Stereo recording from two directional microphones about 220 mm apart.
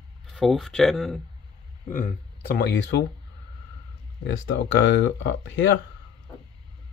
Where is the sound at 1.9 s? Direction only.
40° left (ahead or behind).